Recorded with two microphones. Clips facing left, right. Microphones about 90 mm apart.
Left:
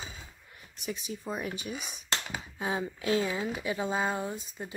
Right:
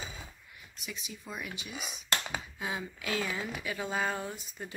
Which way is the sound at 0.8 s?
40° left (ahead or behind).